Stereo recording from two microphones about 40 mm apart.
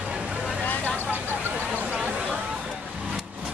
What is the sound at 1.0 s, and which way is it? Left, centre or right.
Vehicle, left.